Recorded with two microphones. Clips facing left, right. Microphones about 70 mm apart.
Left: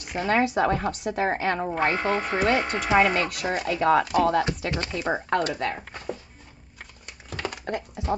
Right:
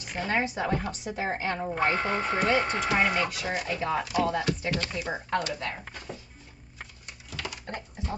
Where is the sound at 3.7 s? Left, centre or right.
Left.